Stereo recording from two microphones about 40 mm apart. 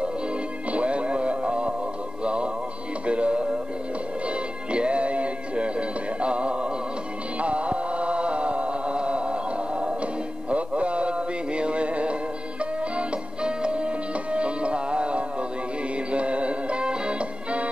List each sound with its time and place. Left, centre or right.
0.7 s music: right
7.3 s chant: right
10.5 s music: right